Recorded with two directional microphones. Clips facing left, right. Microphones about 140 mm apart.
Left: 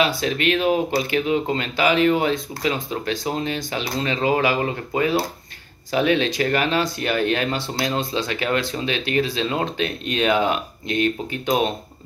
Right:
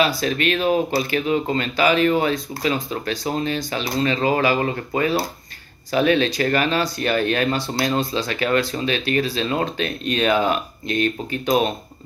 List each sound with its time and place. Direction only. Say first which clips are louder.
0.2 s speech: even; 15° left (ahead or behind)